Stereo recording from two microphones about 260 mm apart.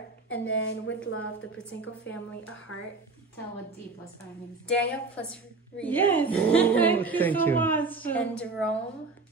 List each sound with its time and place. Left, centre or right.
0.3 s speech: left
1.6 s a woman's voice: centre
4.6 s a woman's voice: centre